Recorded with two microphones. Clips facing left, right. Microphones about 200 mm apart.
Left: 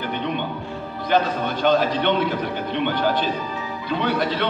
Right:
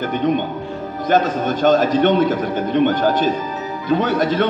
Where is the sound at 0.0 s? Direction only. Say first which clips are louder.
Right 7 dB; 45° right (ahead or behind).